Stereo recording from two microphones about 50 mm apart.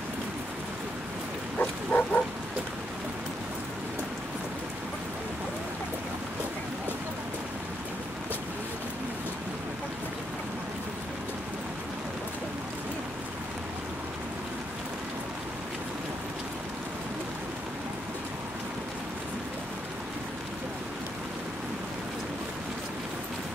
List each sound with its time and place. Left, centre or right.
1.6 s pig: left